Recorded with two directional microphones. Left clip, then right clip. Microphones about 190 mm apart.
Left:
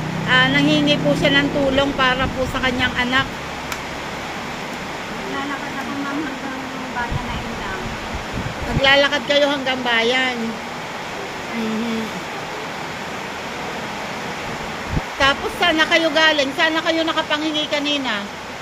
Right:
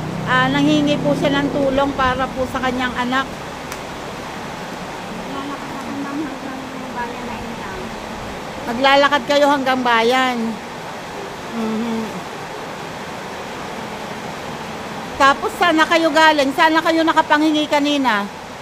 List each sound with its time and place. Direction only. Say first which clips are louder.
0.3 s speech: left 1 dB; 15° right (ahead or behind)
8.8 s speech: right 2 dB; 25° right (ahead or behind)
15.1 s speech: right 4 dB; 20° right (ahead or behind)